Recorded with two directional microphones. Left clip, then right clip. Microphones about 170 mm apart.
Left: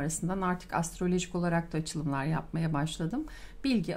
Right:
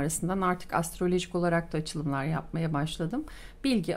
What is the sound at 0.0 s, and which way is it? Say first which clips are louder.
Speech: right 4 dB; 35° right (ahead or behind).